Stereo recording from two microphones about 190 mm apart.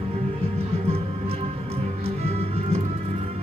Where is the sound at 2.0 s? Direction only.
30° right (ahead or behind).